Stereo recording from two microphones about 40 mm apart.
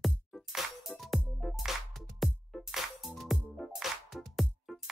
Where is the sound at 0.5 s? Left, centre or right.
Centre.